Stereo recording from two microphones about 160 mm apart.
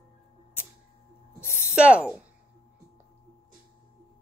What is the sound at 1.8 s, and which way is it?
Speech, 5° right (ahead or behind).